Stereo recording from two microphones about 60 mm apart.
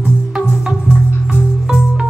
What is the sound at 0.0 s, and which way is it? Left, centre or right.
Music, centre.